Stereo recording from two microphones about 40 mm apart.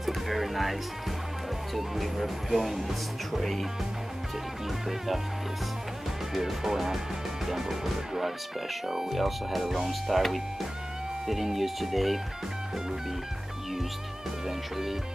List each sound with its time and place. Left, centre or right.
0.0 s speech: centre
1.8 s speech: centre
4.8 s speech: centre
6.3 s speech: centre